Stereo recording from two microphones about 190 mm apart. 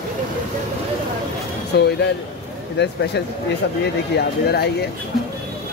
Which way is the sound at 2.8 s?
65° left (ahead or behind).